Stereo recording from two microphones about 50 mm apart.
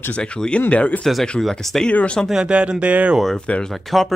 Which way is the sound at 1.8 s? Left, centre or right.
Left.